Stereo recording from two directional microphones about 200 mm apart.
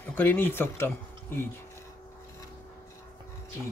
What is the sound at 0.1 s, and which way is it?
Speech, 10° left (ahead or behind).